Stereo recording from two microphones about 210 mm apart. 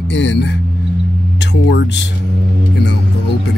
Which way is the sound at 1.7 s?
55° left (ahead or behind).